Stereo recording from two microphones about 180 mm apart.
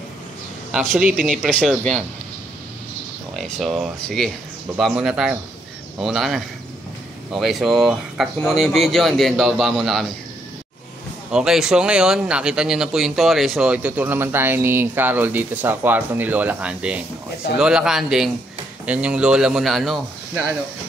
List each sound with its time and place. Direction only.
0.7 s speech: 5° right (ahead or behind)
1.4 s a man's voice: 5° left (ahead or behind)
3.3 s a man's voice: centre (ahead or behind)
11.3 s a man's voice: 5° right (ahead or behind)